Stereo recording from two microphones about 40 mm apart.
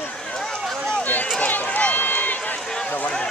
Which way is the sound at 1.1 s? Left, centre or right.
Left.